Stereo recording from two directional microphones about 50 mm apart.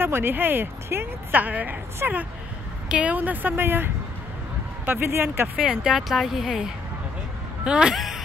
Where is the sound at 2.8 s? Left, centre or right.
Right.